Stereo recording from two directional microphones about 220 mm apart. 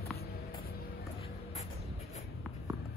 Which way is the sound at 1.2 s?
30° left (ahead or behind).